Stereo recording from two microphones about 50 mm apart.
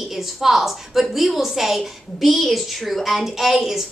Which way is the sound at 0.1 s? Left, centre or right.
Centre.